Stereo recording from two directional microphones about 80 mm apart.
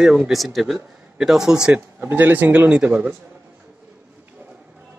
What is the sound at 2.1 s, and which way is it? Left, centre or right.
Speech, right.